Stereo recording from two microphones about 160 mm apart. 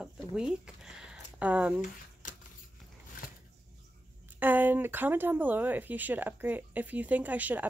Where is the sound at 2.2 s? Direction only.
55° left (ahead or behind).